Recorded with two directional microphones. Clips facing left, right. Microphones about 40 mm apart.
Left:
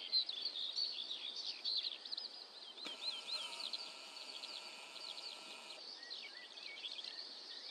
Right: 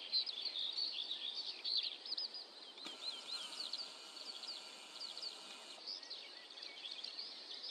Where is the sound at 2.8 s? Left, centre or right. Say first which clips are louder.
Left 2 dB; left.